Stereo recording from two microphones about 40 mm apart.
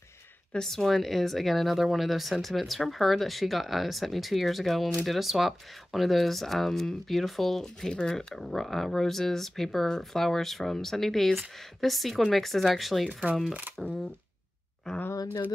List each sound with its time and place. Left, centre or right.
0.6 s speech: centre
7.9 s speech: left
8.4 s speech: centre
13.5 s speech: right
14.8 s speech: centre